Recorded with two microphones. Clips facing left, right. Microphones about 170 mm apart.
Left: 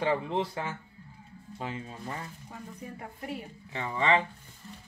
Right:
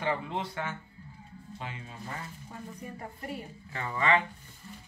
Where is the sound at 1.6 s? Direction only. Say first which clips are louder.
Left 5 dB; 40° left (ahead or behind).